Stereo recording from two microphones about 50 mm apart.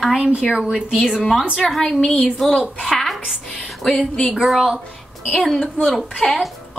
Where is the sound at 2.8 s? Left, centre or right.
Centre.